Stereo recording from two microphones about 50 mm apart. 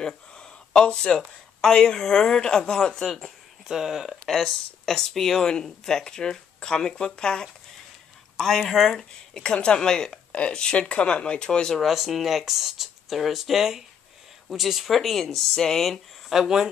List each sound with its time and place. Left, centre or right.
0.0 s speech: centre
3.6 s speech: centre
4.1 s speech: centre
8.4 s speech: centre
11.8 s speech: centre
16.3 s speech: centre